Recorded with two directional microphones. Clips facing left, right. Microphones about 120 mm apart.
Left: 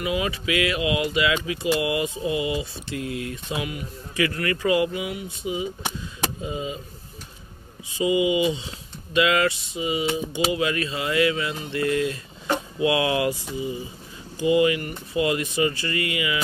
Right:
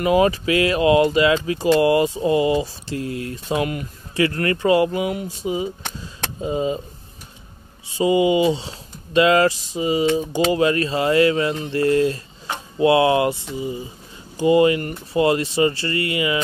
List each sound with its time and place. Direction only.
0.0 s speech: 40° right (ahead or behind)
7.9 s speech: 35° right (ahead or behind)